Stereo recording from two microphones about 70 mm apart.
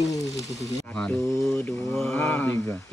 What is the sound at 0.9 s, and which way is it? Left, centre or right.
Speech, centre.